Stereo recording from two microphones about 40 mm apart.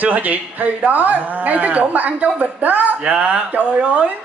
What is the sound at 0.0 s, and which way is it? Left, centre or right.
A woman's voice, right.